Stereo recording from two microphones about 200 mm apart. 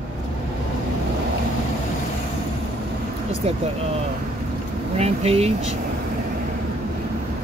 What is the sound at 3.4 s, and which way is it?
Speech, 30° right (ahead or behind).